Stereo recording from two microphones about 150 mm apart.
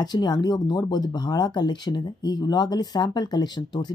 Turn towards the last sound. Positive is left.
turn(degrees=30)  # may be behind; listen again after turning